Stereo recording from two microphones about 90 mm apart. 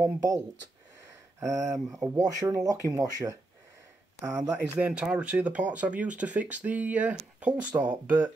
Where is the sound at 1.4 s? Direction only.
40° right (ahead or behind).